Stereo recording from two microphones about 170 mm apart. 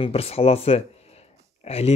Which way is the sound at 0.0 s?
35° left (ahead or behind).